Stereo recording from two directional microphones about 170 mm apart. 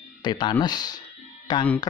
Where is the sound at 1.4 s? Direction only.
25° left (ahead or behind).